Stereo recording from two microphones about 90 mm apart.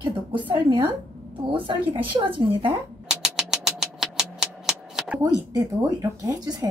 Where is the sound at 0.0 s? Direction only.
65° right (ahead or behind).